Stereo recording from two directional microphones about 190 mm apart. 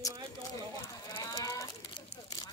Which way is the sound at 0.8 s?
15° left (ahead or behind).